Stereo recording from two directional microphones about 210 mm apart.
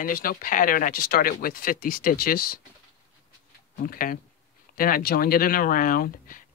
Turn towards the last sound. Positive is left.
turn(degrees=40)  # may be behind; listen again after turning